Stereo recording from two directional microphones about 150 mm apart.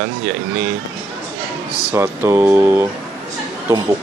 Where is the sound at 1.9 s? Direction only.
15° right (ahead or behind).